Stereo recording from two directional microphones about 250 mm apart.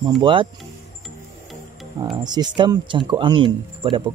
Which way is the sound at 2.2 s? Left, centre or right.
Centre.